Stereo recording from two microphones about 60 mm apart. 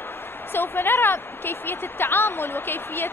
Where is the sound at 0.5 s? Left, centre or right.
Left.